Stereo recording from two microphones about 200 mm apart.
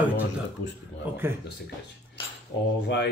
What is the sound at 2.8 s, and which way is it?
Speech, 60° left (ahead or behind).